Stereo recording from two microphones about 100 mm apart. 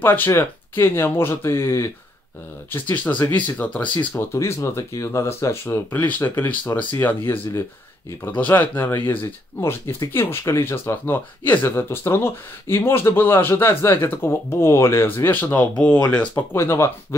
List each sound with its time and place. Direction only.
0.0 s speech: 20° left (ahead or behind)
2.7 s speech: 15° left (ahead or behind)
4.1 s speech: 25° left (ahead or behind)
8.4 s speech: 15° left (ahead or behind)
16.5 s speech: 25° left (ahead or behind)